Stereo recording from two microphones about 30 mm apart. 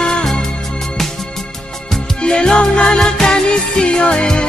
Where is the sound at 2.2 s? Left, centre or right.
Left.